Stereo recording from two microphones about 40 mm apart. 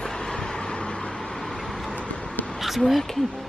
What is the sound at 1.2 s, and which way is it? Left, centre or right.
Vehicle, centre.